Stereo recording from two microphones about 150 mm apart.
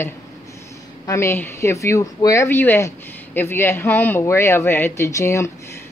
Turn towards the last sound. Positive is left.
turn(degrees=20)  # may be behind; listen again after turning